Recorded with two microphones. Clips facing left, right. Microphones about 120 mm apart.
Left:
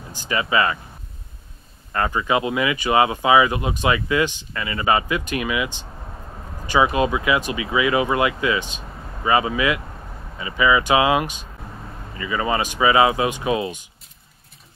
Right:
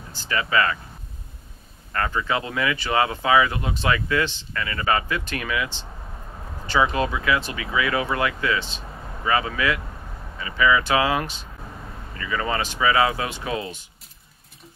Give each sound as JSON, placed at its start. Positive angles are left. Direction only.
{"t": 0.1, "sound": "speech", "side_deg": 15}
{"t": 1.9, "sound": "speech", "side_deg": 20}